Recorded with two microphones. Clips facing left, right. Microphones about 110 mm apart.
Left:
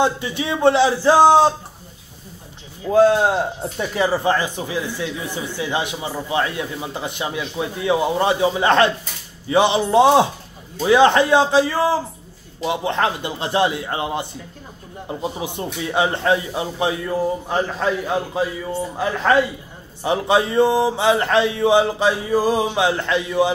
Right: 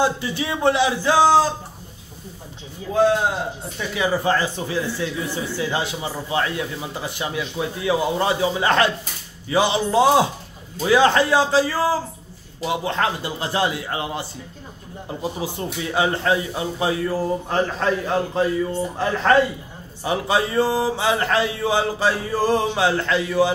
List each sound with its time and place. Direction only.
0.0 s speech: 20° left (ahead or behind)
3.7 s speech: 35° left (ahead or behind)
4.3 s speech: 20° left (ahead or behind)
20.0 s speech: 25° left (ahead or behind)